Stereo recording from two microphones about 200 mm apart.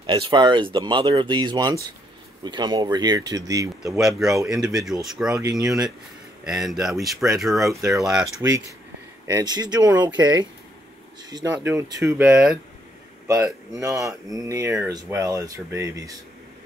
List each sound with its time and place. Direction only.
0.0 s speech: 25° right (ahead or behind)
4.0 s speech: centre (ahead or behind)
5.4 s speech: 15° right (ahead or behind)
6.4 s speech: centre (ahead or behind)
9.3 s speech: 20° right (ahead or behind)
13.7 s speech: 15° right (ahead or behind)